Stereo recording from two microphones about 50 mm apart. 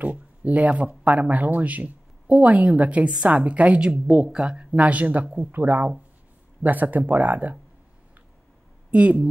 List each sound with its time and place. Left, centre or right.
0.0 s a woman's voice: right
8.9 s a woman's voice: right